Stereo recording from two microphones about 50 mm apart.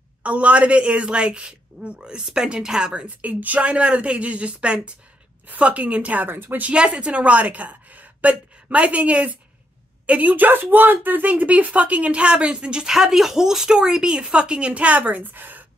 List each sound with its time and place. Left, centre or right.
0.2 s speech: right
3.1 s speech: right
6.2 s speech: right
6.7 s a woman's voice: centre
12.9 s speech: centre; by 15.6 s right